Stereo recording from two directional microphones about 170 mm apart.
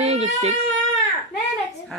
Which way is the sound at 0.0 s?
40° right (ahead or behind).